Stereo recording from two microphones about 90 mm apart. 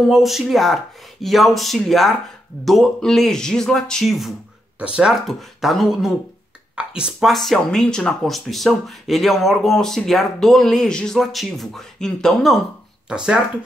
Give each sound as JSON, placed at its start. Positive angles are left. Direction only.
{"t": 0.0, "sound": "speech", "side_deg": 0}
{"t": 4.7, "sound": "speech", "side_deg": -10}
{"t": 13.1, "sound": "speech", "side_deg": -10}